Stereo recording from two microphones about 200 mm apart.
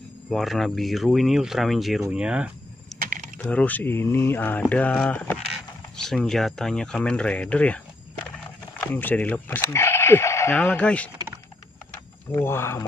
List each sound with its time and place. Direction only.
0.3 s speech: centre (ahead or behind)
2.0 s a sound: 5° right (ahead or behind)
3.0 s typing: 40° right (ahead or behind)
3.3 s speech: 10° left (ahead or behind)
12.3 s speech: 15° left (ahead or behind)